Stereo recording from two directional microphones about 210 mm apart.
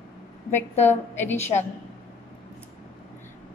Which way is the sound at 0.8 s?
10° left (ahead or behind).